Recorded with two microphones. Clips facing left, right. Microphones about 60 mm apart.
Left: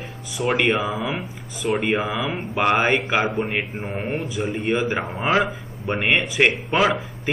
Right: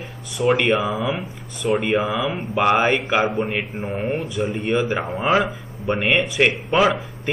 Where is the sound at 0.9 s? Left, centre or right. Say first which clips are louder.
Right 2 dB; left.